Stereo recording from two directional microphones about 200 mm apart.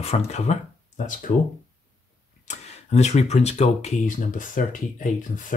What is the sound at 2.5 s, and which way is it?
Speech, 35° left (ahead or behind).